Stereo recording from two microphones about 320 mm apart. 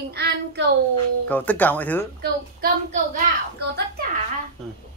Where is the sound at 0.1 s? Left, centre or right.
Right.